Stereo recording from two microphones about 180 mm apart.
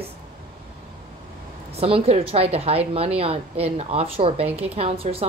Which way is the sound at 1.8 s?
35° right (ahead or behind).